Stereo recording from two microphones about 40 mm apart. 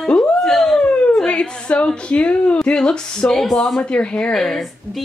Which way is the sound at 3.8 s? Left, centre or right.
Left.